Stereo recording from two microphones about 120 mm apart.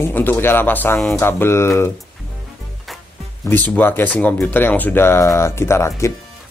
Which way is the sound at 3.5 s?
15° left (ahead or behind).